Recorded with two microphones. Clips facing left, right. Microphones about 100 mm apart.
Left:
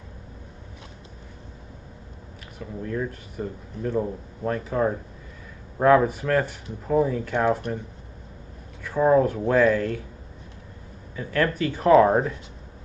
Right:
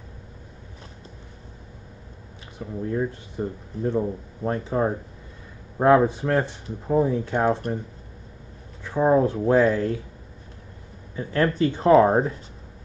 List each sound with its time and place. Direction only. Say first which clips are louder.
2.6 s speech: right 3 dB; 30° right (ahead or behind)
3.9 s speech: left 2 dB; centre (ahead or behind)
4.5 s speech: even; 30° right (ahead or behind)
8.8 s speech: even; 30° right (ahead or behind)
11.1 s speech: right 2 dB; 30° right (ahead or behind)